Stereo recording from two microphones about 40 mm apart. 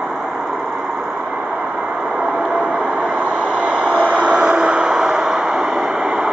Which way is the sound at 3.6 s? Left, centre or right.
Right.